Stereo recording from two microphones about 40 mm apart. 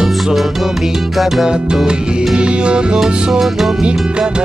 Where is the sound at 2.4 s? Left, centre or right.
Right.